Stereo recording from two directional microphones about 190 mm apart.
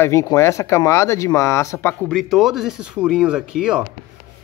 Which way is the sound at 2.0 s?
Centre (ahead or behind).